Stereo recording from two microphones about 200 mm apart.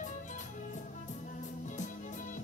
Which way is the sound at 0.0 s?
40° left (ahead or behind).